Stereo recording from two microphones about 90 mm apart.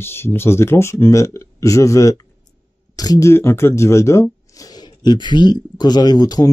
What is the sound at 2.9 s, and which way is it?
Speech, 45° left (ahead or behind).